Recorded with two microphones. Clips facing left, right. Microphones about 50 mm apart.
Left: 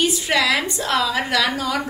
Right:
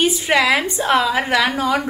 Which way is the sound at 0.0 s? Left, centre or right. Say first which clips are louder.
Right 3 dB; right.